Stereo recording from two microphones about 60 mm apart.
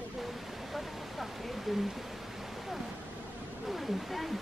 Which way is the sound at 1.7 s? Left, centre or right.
Centre.